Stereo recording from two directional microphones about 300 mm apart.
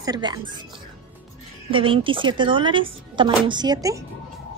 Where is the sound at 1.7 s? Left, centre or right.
Centre.